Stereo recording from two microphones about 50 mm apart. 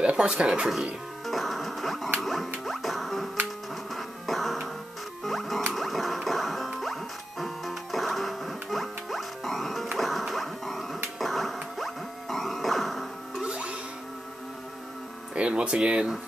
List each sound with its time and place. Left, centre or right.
0.1 s speech: centre
1.2 s music: centre
9.9 s whip: centre
11.1 s a sound: centre
13.4 s music: centre
15.3 s hum: right